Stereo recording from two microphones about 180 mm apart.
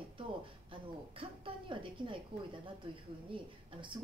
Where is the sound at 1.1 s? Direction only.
30° right (ahead or behind).